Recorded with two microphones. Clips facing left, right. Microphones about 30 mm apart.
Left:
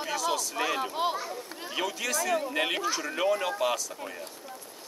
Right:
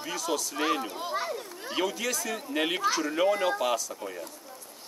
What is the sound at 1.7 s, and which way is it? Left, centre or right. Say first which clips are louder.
Speech: right 1 dB; centre.